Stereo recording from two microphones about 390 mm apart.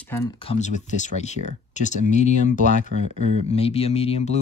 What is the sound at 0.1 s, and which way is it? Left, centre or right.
Speech, centre.